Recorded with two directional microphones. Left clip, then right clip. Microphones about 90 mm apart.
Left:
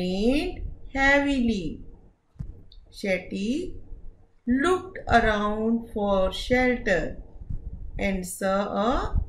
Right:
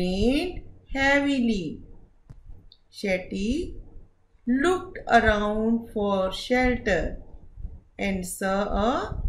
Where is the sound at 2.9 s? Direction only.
70° right (ahead or behind).